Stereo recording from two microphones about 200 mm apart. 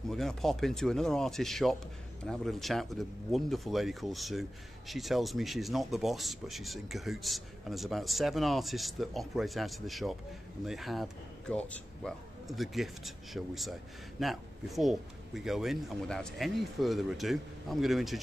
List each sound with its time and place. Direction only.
0.1 s speech: centre (ahead or behind)